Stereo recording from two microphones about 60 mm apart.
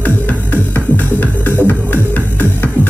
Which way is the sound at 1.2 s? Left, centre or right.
Left.